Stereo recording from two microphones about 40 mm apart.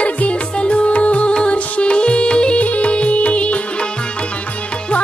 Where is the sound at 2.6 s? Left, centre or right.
Left.